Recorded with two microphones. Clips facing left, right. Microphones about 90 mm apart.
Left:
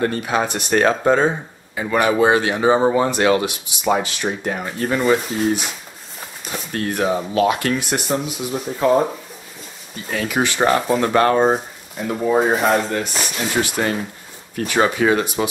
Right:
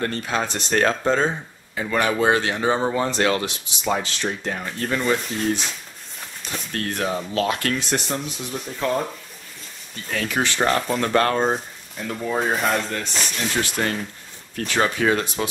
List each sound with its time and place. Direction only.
0.0 s speech: 15° left (ahead or behind)
6.7 s speech: 15° left (ahead or behind)
12.4 s speech: 5° left (ahead or behind)